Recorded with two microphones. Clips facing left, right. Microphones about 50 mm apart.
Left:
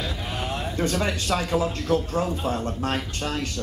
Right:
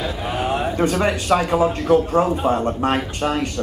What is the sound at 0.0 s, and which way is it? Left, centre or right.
A man's voice, centre.